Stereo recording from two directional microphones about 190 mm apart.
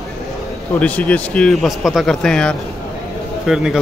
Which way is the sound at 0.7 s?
5° left (ahead or behind).